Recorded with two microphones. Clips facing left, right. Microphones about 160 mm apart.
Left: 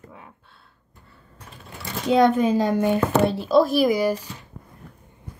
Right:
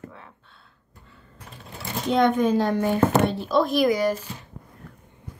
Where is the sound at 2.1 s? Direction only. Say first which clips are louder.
Left 2 dB; 10° left (ahead or behind).